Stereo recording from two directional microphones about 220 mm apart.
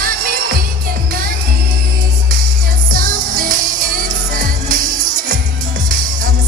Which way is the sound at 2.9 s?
40° right (ahead or behind).